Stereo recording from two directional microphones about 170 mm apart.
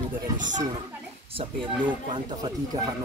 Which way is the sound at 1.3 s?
30° right (ahead or behind).